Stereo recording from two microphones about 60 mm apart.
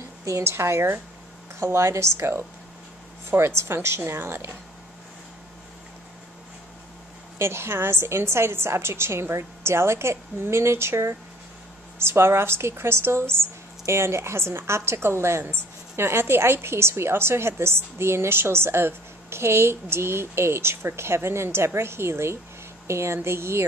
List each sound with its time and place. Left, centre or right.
0.2 s a woman's voice: right
7.3 s a woman's voice: right